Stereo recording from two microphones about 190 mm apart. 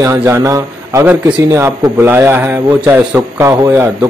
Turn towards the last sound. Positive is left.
turn(degrees=-15)  # may be behind; listen again after turning